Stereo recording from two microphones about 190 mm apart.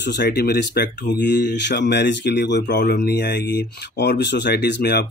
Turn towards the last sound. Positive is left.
turn(degrees=60)  # may be behind; listen again after turning